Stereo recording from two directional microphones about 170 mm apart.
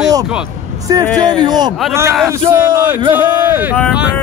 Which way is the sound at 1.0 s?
5° left (ahead or behind).